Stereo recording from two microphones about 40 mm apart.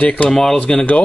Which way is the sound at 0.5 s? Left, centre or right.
Left.